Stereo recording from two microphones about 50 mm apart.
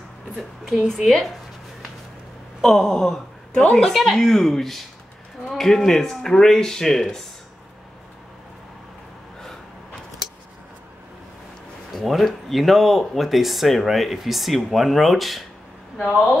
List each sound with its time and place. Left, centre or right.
0.4 s a woman's voice: centre
2.6 s a woman's voice: centre
3.9 s speech: centre
11.9 s speech: centre